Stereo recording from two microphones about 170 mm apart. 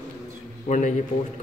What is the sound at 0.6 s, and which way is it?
Speech, 45° left (ahead or behind).